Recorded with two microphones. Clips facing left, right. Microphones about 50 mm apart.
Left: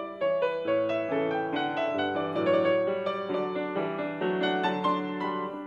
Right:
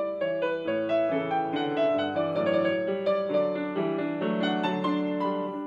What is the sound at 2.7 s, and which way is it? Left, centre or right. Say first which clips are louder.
Music: even; centre.